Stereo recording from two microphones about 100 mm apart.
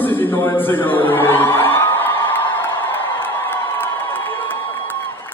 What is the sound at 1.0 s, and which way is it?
Crowd, 20° left (ahead or behind).